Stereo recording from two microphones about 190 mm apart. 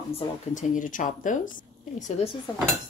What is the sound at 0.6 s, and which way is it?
Speech, 45° left (ahead or behind).